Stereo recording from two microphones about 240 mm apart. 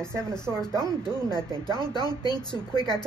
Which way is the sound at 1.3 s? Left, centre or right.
Centre.